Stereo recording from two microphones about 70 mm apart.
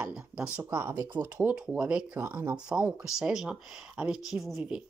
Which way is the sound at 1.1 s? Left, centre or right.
Right.